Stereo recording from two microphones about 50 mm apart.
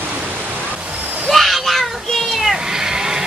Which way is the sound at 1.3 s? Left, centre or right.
Centre.